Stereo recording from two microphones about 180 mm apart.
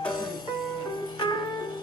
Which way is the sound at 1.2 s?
25° left (ahead or behind).